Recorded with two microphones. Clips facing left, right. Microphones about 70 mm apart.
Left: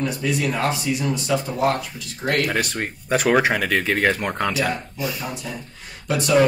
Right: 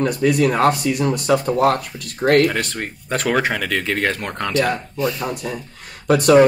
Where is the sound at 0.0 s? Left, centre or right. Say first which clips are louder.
Right 6 dB; right.